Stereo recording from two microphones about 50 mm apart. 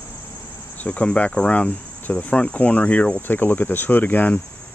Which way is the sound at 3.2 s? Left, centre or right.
Left.